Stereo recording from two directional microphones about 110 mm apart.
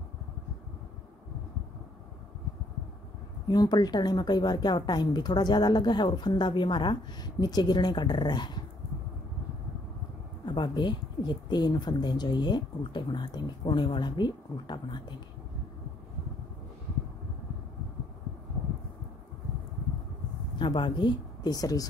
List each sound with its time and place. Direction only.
3.4 s a woman's voice: 40° left (ahead or behind)
10.4 s speech: 45° left (ahead or behind)
20.5 s speech: 45° left (ahead or behind)